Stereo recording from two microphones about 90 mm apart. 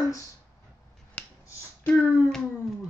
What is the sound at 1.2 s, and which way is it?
Finger snapping, 15° left (ahead or behind).